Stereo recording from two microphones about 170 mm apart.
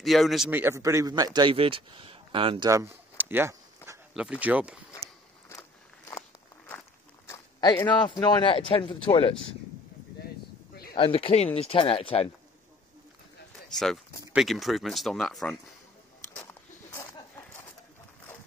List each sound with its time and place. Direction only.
0.0 s speech: centre (ahead or behind)
0.5 s speech: 15° right (ahead or behind); by 2.7 s 30° right (ahead or behind)
2.7 s a sound: 15° right (ahead or behind)
4.1 s speech: 5° right (ahead or behind)
5.5 s walk: 20° left (ahead or behind)
7.2 s a sound: 15° left (ahead or behind)
7.8 s speech: 30° left (ahead or behind)
11.0 s speech: 30° left (ahead or behind)
14.3 s speech: centre (ahead or behind)
16.3 s a sound: 15° left (ahead or behind)